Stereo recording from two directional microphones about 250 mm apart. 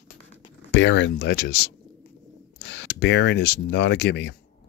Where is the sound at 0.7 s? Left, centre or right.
Left.